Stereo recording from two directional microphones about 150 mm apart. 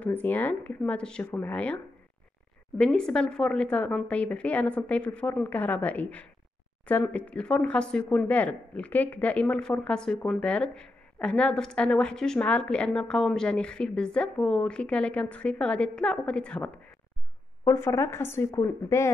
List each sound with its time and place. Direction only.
0.0 s speech: 10° left (ahead or behind)
2.8 s speech: 5° left (ahead or behind)
17.6 s speech: 20° left (ahead or behind)